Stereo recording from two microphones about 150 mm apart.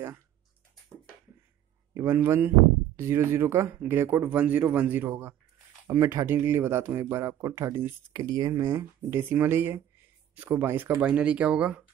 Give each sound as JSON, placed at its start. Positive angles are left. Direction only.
{"t": 2.0, "sound": "speech", "side_deg": -15}